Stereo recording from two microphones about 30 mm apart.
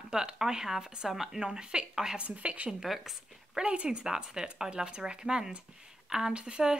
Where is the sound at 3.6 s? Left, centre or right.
Right.